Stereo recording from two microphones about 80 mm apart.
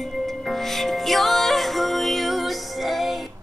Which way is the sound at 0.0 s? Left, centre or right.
Centre.